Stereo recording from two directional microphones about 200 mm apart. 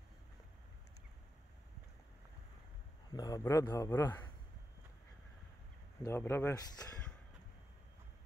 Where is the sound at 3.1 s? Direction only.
20° left (ahead or behind).